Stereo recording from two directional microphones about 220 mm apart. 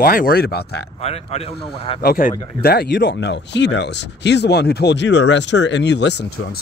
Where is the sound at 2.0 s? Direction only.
40° left (ahead or behind).